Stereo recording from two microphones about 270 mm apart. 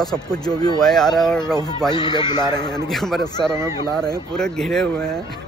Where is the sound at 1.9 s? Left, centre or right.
Centre.